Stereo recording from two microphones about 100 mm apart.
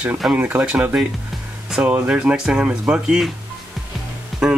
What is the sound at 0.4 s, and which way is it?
Speech, 15° right (ahead or behind).